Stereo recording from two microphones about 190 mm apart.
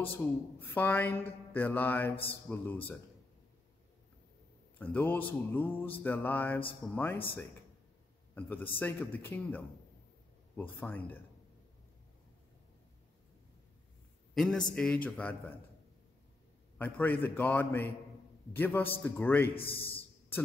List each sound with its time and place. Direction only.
0.0 s speech: 10° left (ahead or behind)
4.7 s speech: 10° left (ahead or behind)
14.3 s a man's voice: centre (ahead or behind)
16.7 s speech: 10° left (ahead or behind)
19.5 s a man's voice: 30° left (ahead or behind)